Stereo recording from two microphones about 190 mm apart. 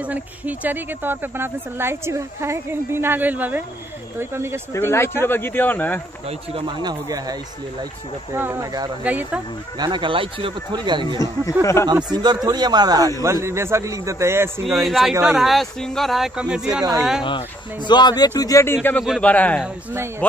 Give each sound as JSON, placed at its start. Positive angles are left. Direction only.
{"t": 0.0, "sound": "speech", "side_deg": -10}
{"t": 4.7, "sound": "speech", "side_deg": 15}
{"t": 6.5, "sound": "speech", "side_deg": -20}
{"t": 8.4, "sound": "speech", "side_deg": -15}
{"t": 9.0, "sound": "speech", "side_deg": -10}
{"t": 9.8, "sound": "speech", "side_deg": -25}
{"t": 11.6, "sound": "speech", "side_deg": 15}
{"t": 11.9, "sound": "speech", "side_deg": -20}
{"t": 14.8, "sound": "speech", "side_deg": 0}
{"t": 17.8, "sound": "a man's voice", "side_deg": 25}
{"t": 19.6, "sound": "speech", "side_deg": -10}